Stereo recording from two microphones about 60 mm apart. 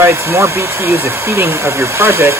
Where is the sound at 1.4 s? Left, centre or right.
Right.